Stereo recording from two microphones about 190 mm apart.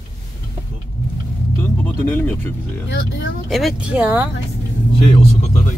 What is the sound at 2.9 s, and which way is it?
Speech, 65° left (ahead or behind).